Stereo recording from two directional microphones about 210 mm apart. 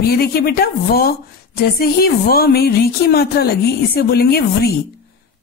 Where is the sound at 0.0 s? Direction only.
45° left (ahead or behind).